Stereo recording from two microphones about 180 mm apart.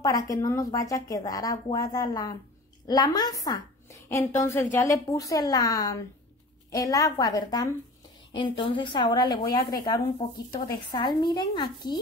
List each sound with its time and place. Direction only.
0.0 s a woman's voice: 20° left (ahead or behind)